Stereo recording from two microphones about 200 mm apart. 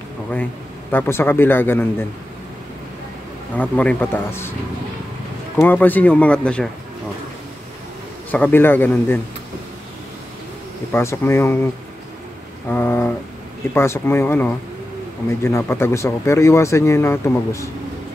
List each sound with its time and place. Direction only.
0.9 s speech: 10° left (ahead or behind)
3.5 s speech: 5° left (ahead or behind)
5.6 s speech: 10° left (ahead or behind)
8.3 s speech: 10° left (ahead or behind)
10.9 s speech: 15° left (ahead or behind)